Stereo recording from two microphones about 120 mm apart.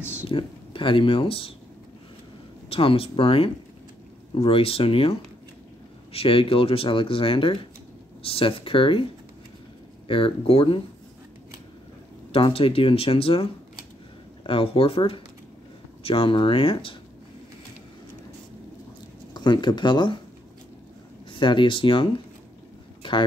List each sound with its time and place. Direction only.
0.3 s speech: 45° left (ahead or behind)
2.7 s speech: 50° left (ahead or behind)
6.1 s speech: 50° left (ahead or behind)
10.0 s speech: 50° left (ahead or behind)
12.3 s speech: 50° left (ahead or behind)
19.3 s speech: 40° left (ahead or behind)
21.3 s speech: 45° left (ahead or behind)
23.0 s a sound: 45° left (ahead or behind)